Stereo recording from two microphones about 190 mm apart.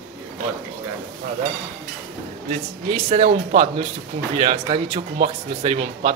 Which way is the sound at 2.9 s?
35° right (ahead or behind).